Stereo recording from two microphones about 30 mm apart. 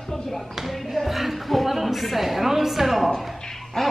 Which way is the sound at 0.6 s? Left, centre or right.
Centre.